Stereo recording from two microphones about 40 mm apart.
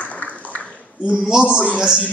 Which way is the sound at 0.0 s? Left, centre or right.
Left.